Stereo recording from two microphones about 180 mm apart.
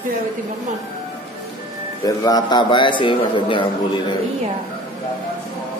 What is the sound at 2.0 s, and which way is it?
A man's voice, 20° left (ahead or behind).